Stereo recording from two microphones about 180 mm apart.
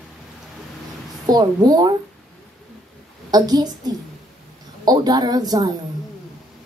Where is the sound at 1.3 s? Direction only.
20° right (ahead or behind).